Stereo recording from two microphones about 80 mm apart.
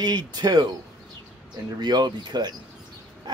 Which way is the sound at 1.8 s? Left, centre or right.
Right.